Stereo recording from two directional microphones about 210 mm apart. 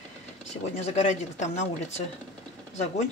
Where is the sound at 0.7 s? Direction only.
30° left (ahead or behind).